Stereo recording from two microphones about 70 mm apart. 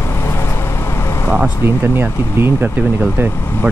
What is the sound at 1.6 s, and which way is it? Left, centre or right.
Speech, right.